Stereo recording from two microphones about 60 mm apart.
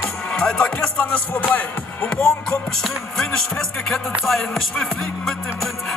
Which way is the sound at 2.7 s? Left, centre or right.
Centre.